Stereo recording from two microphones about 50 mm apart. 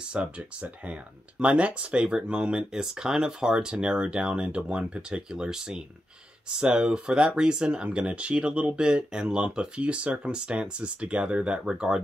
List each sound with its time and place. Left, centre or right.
0.2 s speech: right